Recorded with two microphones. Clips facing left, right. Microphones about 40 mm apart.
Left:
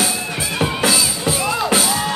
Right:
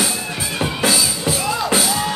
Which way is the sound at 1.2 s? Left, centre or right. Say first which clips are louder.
Left 1 dB; centre.